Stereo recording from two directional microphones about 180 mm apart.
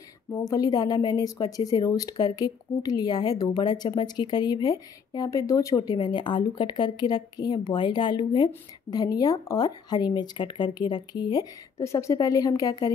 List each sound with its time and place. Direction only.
0.3 s speech: 20° left (ahead or behind)